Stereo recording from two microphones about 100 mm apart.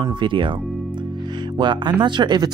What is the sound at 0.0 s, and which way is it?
Speech, 50° right (ahead or behind).